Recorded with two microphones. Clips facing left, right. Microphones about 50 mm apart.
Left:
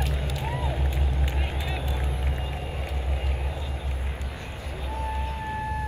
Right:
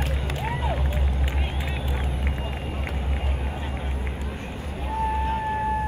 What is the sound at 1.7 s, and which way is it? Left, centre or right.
Vehicle, right.